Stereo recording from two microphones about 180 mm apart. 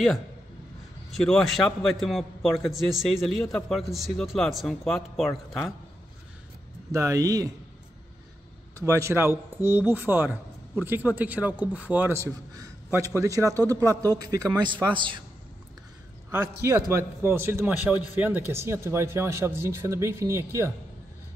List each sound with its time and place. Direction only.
1.1 s a man's voice: centre (ahead or behind)
6.9 s a man's voice: 15° right (ahead or behind)
8.7 s a man's voice: 15° right (ahead or behind)
16.3 s speech: 15° right (ahead or behind)